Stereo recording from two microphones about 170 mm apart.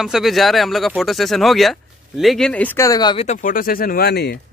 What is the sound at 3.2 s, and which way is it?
Speech, 45° left (ahead or behind).